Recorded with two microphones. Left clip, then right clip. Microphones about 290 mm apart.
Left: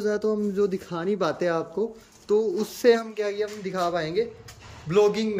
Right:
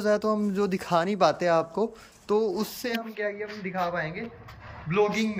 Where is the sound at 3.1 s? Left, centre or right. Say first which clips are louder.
Left 4 dB; left.